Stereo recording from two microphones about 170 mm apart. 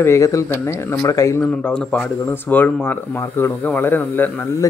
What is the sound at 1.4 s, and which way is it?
Speech, 5° left (ahead or behind).